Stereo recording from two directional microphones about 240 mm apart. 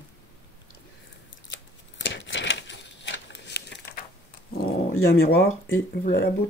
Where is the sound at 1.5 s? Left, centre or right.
Left.